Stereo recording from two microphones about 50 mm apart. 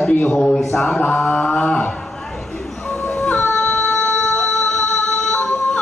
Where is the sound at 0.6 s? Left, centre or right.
Centre.